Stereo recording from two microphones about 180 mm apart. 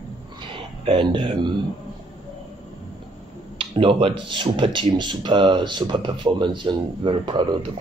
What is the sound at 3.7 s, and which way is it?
Speech, 30° right (ahead or behind).